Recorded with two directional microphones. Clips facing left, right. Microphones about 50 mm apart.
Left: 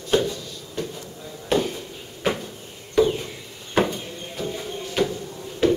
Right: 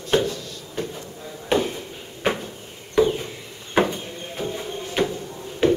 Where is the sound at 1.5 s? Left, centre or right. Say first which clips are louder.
Right 1 dB; centre.